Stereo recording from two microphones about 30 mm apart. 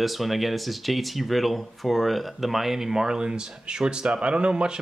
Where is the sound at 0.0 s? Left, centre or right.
Centre.